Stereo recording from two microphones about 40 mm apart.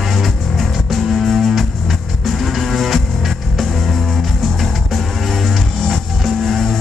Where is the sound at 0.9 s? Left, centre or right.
Centre.